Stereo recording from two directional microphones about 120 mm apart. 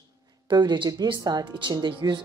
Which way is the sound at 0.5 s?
40° right (ahead or behind).